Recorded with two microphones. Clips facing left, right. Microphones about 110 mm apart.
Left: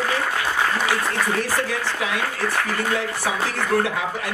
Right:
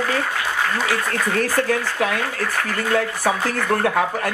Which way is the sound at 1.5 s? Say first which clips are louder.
Right 4 dB; 50° right (ahead or behind).